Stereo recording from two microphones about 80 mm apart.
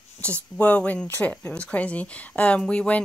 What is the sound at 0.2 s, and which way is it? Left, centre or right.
A woman's voice, centre.